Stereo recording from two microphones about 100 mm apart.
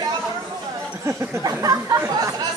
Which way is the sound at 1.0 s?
30° right (ahead or behind).